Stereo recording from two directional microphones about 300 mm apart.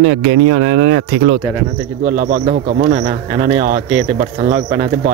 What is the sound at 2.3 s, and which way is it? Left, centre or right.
Speech, right.